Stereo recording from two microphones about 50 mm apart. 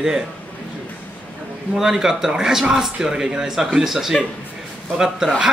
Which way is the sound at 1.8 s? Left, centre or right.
Centre.